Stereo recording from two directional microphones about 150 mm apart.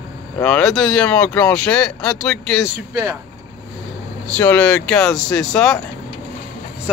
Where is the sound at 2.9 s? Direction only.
20° right (ahead or behind).